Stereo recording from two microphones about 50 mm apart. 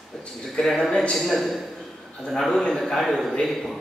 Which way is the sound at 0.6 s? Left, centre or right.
Centre.